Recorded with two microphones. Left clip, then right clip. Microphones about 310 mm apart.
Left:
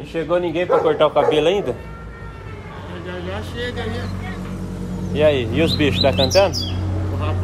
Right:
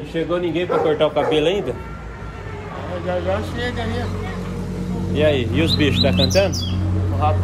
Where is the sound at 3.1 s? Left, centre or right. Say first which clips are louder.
Right 8 dB; centre.